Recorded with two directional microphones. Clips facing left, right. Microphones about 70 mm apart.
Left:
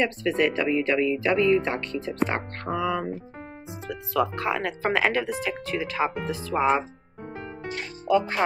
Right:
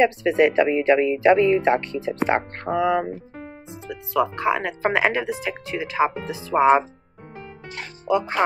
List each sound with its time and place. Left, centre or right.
0.0 s speech: right
3.8 s speech: centre